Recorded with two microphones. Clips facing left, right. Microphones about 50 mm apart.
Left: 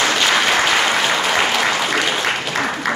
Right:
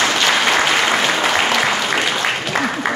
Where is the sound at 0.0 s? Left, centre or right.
Centre.